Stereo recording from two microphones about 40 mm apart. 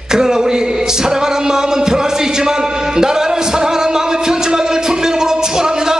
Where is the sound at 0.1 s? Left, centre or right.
Centre.